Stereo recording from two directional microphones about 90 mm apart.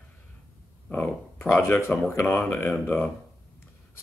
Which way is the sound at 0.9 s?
25° left (ahead or behind).